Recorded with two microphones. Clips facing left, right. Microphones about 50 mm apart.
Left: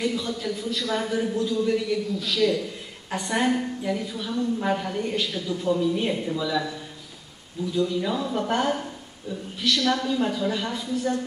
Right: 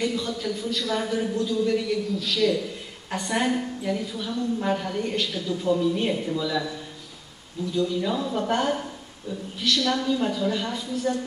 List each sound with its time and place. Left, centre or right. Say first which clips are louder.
0.0 s a woman's voice: even; centre
7.7 s a woman's voice: even; centre